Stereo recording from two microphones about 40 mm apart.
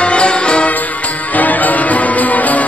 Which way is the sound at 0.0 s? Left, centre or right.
Left.